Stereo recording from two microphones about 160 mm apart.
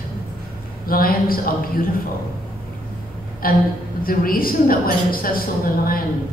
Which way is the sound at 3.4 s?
65° left (ahead or behind).